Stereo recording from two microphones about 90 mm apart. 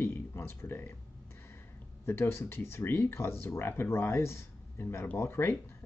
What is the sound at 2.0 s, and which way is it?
Speech, 25° left (ahead or behind).